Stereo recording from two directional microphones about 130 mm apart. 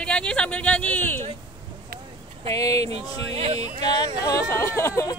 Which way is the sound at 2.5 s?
25° left (ahead or behind).